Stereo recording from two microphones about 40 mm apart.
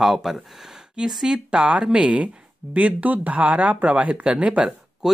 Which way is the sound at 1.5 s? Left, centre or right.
Right.